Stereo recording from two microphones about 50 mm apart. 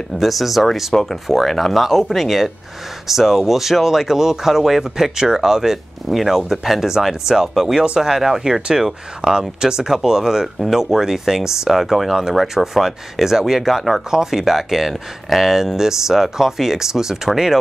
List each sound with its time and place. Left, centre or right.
0.2 s speech: centre